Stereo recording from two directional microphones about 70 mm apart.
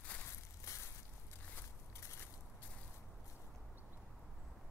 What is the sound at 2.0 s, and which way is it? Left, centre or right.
Walk, left.